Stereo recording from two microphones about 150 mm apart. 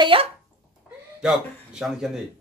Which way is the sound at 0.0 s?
35° right (ahead or behind).